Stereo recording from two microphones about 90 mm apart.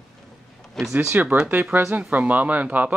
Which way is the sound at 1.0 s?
20° right (ahead or behind).